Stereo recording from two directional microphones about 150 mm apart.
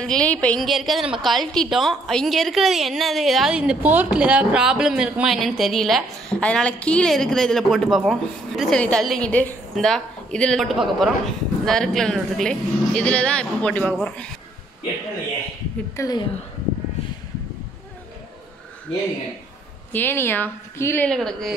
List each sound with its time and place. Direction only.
0.0 s a woman's voice: 5° left (ahead or behind)
16.0 s a woman's voice: 25° left (ahead or behind)
19.9 s a woman's voice: 15° left (ahead or behind)